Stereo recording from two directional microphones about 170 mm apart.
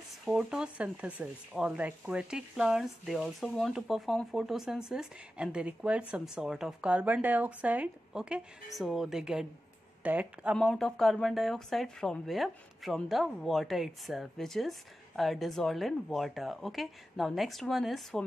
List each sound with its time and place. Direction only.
0.2 s speech: 5° right (ahead or behind)